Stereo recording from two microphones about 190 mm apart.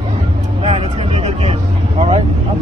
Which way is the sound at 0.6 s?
30° right (ahead or behind).